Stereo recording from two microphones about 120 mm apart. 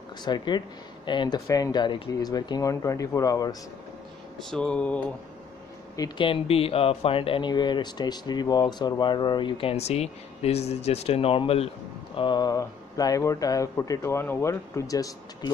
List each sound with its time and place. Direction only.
0.2 s speech: 40° left (ahead or behind)
4.4 s a sound: 5° left (ahead or behind)
5.9 s speech: 40° left (ahead or behind); by 11.7 s 55° left (ahead or behind)
12.2 s speech: 35° left (ahead or behind)